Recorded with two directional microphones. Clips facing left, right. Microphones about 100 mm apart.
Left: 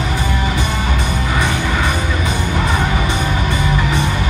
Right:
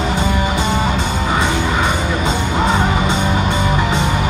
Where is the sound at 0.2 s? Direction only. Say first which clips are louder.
Right 2 dB; 25° right (ahead or behind).